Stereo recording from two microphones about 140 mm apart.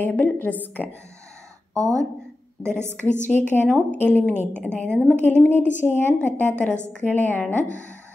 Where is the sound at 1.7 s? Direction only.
25° right (ahead or behind).